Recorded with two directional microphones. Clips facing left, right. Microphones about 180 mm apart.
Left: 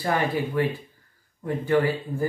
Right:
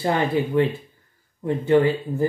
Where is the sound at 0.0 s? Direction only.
25° right (ahead or behind).